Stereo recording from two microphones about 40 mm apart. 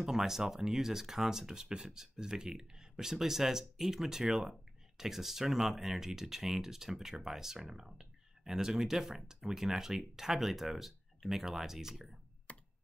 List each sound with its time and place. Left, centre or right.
0.0 s speech: centre
12.5 s computer keyboard: left